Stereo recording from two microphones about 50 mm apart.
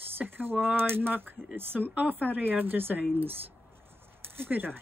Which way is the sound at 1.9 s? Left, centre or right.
Right.